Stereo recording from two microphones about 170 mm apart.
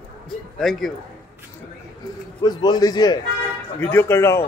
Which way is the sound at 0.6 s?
Centre (ahead or behind).